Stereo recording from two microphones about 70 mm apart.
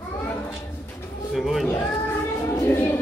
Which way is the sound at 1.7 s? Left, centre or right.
Left.